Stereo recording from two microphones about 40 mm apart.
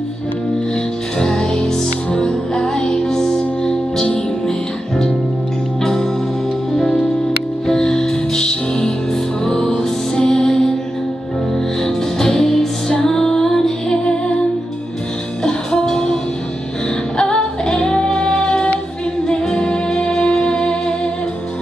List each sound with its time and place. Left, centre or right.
1.2 s music: centre
7.6 s music: centre
15.4 s music: centre
17.2 s female singing: left
19.2 s music: centre